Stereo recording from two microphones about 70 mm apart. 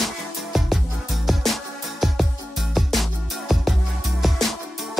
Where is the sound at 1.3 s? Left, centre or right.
Centre.